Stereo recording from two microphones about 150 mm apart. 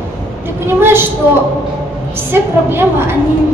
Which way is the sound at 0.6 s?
15° right (ahead or behind).